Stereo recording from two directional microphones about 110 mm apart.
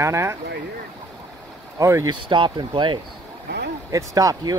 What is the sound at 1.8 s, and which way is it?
Speech, 25° right (ahead or behind).